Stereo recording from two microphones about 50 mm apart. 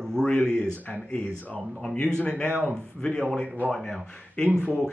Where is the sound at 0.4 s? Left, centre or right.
Centre.